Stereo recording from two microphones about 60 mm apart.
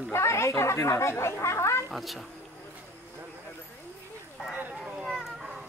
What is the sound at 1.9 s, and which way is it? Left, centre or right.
Speech, centre.